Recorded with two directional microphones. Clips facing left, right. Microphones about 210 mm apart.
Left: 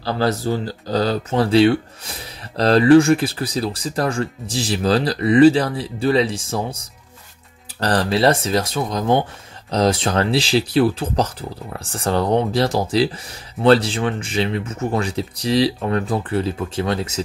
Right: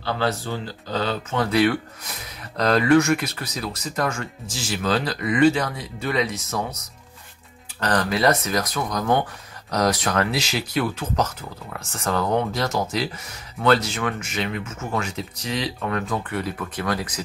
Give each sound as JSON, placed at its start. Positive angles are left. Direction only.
{"t": 0.0, "sound": "speech", "side_deg": 35}